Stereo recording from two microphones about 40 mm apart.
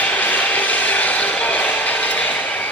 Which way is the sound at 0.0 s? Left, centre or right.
Left.